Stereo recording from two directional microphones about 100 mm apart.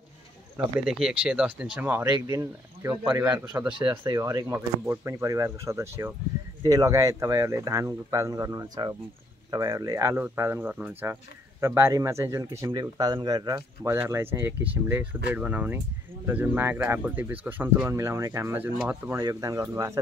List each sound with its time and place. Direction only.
0.8 s speech: 5° right (ahead or behind)
2.0 s speech: 40° right (ahead or behind)
3.3 s speech: 15° right (ahead or behind)
4.1 s speech: 35° right (ahead or behind)
12.8 s speech: 40° right (ahead or behind)
13.8 s speech: 25° right (ahead or behind)
17.9 s speech: 30° right (ahead or behind)
19.2 s speech: 35° right (ahead or behind)